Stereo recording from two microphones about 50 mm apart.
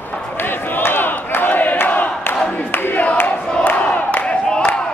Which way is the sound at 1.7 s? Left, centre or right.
Left.